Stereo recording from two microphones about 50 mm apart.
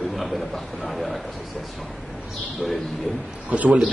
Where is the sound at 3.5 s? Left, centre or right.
Right.